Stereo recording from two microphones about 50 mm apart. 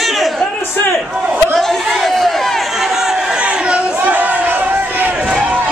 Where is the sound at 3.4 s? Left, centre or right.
Centre.